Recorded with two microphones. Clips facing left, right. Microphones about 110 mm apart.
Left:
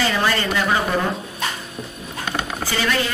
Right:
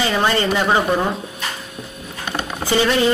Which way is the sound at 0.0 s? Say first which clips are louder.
Right 3 dB; 20° right (ahead or behind).